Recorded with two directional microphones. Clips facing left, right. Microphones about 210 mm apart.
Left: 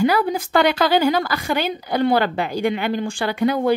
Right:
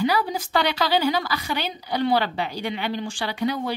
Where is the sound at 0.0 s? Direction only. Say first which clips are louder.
Left 5 dB; 55° left (ahead or behind).